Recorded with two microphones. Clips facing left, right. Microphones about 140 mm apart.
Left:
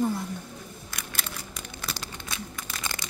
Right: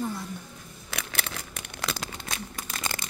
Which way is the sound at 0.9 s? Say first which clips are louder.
Right 5 dB; 70° right (ahead or behind).